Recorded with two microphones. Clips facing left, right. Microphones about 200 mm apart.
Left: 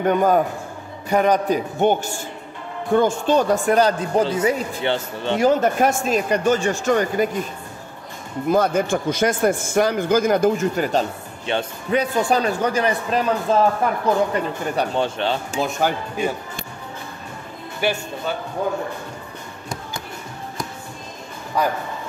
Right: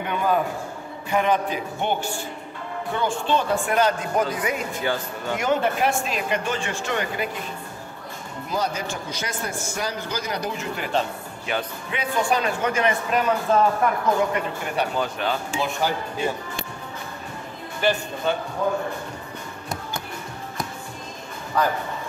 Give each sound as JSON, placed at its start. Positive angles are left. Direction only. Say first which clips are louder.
{"t": 0.0, "sound": "a man's voice", "louder": "left 6 dB", "side_deg": 45}
{"t": 8.5, "sound": "a man's voice", "louder": "left 9 dB", "side_deg": 55}
{"t": 11.5, "sound": "speech", "louder": "left 4 dB", "side_deg": 30}
{"t": 11.9, "sound": "speech", "louder": "left 5 dB", "side_deg": 40}
{"t": 15.8, "sound": "speech", "louder": "left 3 dB", "side_deg": 55}
{"t": 17.8, "sound": "speech", "louder": "even", "side_deg": 10}
{"t": 21.6, "sound": "speech", "louder": "left 1 dB", "side_deg": 10}